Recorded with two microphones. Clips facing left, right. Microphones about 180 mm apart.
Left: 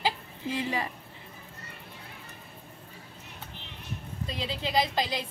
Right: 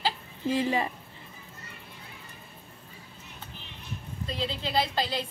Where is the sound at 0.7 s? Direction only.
25° right (ahead or behind).